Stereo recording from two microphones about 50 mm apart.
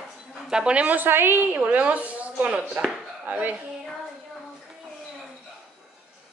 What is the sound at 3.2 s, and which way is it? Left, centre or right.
Speech, right.